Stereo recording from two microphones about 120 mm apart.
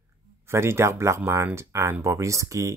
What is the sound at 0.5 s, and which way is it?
Speech, 20° right (ahead or behind).